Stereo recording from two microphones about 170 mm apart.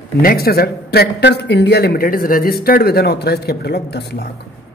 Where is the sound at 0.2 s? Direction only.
60° left (ahead or behind).